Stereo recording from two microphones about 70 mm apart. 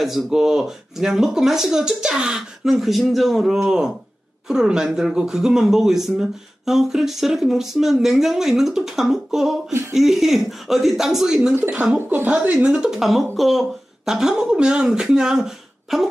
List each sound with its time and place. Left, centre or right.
0.0 s speech: centre
11.7 s a woman's voice: centre
12.7 s speech: centre